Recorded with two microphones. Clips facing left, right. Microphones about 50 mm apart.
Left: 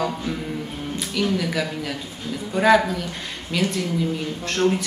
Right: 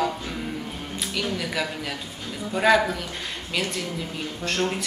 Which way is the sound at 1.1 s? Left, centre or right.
Centre.